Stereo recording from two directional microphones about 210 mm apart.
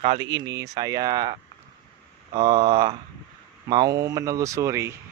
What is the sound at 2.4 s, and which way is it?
Speech, 25° right (ahead or behind).